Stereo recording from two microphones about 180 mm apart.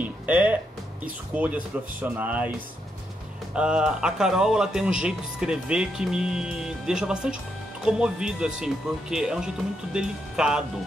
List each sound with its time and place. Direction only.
0.0 s music: 10° right (ahead or behind)
1.0 s speech: 10° right (ahead or behind)
3.5 s a man's voice: 5° right (ahead or behind)